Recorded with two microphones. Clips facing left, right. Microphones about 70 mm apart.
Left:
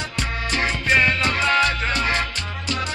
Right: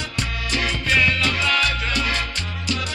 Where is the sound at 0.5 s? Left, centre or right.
Left.